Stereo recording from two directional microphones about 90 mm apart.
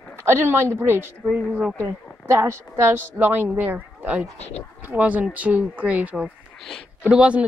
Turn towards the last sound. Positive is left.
turn(degrees=-10)  # may be behind; listen again after turning